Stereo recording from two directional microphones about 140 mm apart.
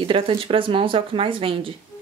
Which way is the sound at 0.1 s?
45° right (ahead or behind).